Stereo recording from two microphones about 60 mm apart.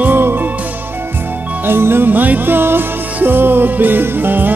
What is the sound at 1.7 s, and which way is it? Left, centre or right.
Music, right.